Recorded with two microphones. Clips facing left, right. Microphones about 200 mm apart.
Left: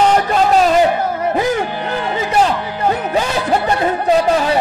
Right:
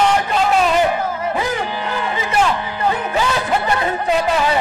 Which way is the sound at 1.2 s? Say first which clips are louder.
Left 4 dB; 50° left (ahead or behind).